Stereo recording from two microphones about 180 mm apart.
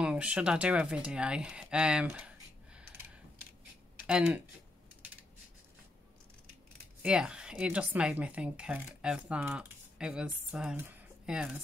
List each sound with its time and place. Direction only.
0.0 s speech: 5° right (ahead or behind)
4.0 s speech: 5° right (ahead or behind)
7.0 s speech: 5° right (ahead or behind)